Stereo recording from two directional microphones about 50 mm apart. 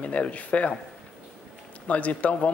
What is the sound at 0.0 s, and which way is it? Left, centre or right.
Speech, left.